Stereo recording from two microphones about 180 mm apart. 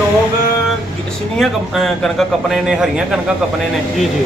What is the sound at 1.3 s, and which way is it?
A man's voice, centre (ahead or behind).